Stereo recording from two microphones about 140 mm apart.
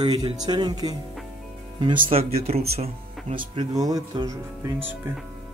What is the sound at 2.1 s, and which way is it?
Speech, 45° right (ahead or behind).